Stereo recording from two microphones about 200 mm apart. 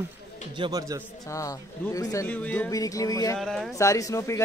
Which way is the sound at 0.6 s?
20° right (ahead or behind).